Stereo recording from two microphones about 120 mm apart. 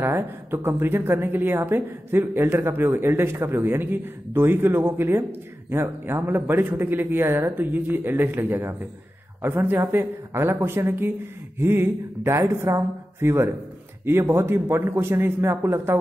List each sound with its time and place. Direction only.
0.0 s a woman's voice: 20° right (ahead or behind)